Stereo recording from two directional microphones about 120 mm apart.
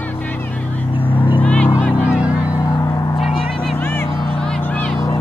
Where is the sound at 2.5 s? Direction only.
30° left (ahead or behind).